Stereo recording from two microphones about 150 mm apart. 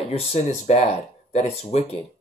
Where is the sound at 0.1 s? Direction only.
45° left (ahead or behind).